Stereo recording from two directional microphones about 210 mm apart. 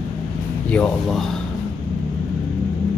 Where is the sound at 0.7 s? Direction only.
5° left (ahead or behind).